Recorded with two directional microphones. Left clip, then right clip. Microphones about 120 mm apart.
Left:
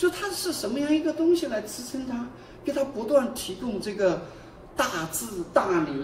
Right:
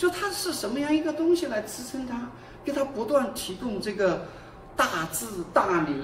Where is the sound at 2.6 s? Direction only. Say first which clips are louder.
Even; 5° right (ahead or behind).